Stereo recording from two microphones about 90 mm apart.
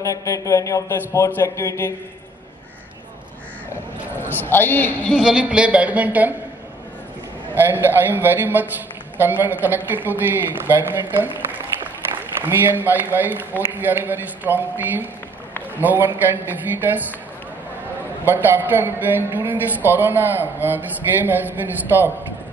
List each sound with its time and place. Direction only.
0.0 s a man's voice: 40° left (ahead or behind)
4.4 s a man's voice: 20° left (ahead or behind)
5.1 s a woman's voice: 10° right (ahead or behind)
7.5 s a man's voice: 25° right (ahead or behind)
12.4 s a man's voice: 25° right (ahead or behind)
18.2 s a man's voice: 25° right (ahead or behind)